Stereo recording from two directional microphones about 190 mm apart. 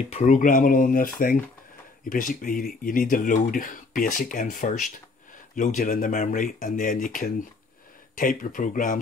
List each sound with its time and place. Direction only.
0.1 s speech: 40° left (ahead or behind)